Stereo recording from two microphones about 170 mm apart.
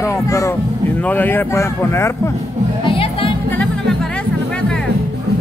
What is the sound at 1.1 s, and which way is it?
Speech, 10° left (ahead or behind).